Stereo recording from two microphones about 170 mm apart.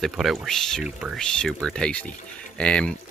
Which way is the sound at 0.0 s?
Centre (ahead or behind).